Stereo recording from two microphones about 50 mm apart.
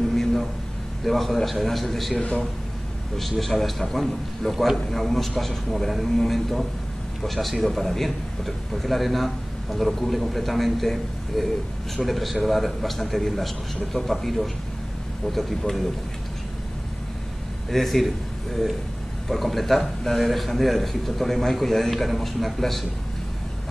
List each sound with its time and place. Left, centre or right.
0.1 s a sound: centre
1.0 s a man's voice: centre
2.1 s speech: left
3.2 s a man's voice: centre
17.6 s a man's voice: centre